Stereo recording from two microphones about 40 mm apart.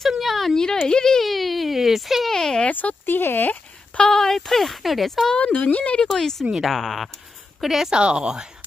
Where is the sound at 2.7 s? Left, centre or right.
Left.